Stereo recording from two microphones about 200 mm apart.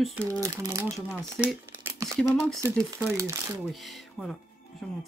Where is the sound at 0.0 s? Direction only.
5° right (ahead or behind).